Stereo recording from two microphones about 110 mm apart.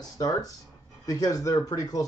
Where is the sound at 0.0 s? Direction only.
35° left (ahead or behind).